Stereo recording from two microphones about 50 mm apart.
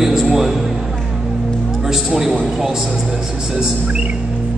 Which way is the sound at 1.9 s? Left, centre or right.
Centre.